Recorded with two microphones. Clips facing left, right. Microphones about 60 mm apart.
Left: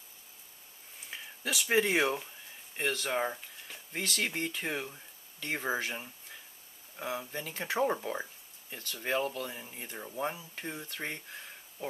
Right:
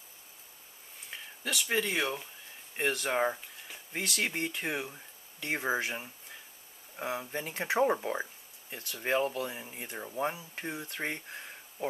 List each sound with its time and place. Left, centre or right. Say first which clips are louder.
1.1 s a sound: even; centre
1.7 s speech: left 4 dB; centre
2.7 s speech: right 2 dB; centre
7.0 s speech: right 2 dB; centre
10.9 s speech: right 3 dB; right